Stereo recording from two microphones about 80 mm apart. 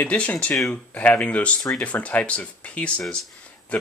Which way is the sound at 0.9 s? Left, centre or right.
Centre.